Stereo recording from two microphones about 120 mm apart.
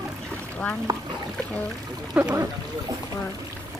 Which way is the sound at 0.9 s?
30° right (ahead or behind).